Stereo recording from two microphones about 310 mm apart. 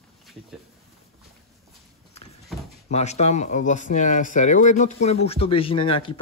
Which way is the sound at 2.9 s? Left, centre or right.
Left.